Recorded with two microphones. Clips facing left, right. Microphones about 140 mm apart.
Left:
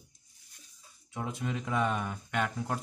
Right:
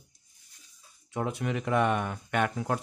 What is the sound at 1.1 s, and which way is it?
Speech, 70° right (ahead or behind).